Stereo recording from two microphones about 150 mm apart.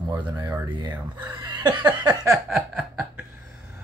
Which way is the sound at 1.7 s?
25° right (ahead or behind).